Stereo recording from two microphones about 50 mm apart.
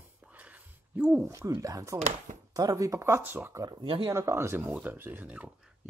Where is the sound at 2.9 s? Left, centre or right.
Right.